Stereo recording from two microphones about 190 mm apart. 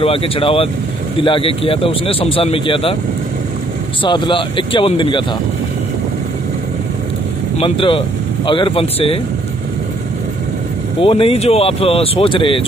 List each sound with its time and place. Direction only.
0.0 s a man's voice: 30° left (ahead or behind)
4.0 s a man's voice: 25° left (ahead or behind)
7.5 s a man's voice: 30° left (ahead or behind)
11.0 s a man's voice: 30° left (ahead or behind)